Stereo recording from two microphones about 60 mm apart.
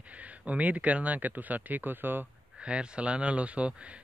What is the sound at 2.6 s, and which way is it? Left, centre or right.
Speech, centre.